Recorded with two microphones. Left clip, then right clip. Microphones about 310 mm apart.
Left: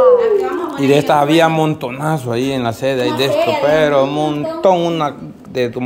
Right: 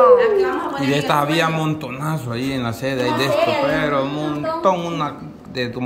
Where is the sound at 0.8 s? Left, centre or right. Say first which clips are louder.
Left 7 dB; centre.